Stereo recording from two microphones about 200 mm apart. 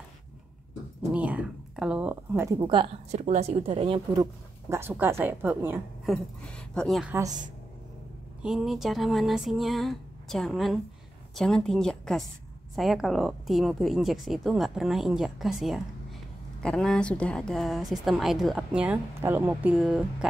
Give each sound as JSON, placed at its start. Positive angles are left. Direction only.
{"t": 1.1, "sound": "speech", "side_deg": -5}
{"t": 2.6, "sound": "a woman's voice", "side_deg": -25}
{"t": 4.6, "sound": "a woman's voice", "side_deg": -10}
{"t": 6.4, "sound": "a woman's voice", "side_deg": 5}
{"t": 7.1, "sound": "a woman's voice", "side_deg": -15}
{"t": 8.4, "sound": "a woman's voice", "side_deg": -5}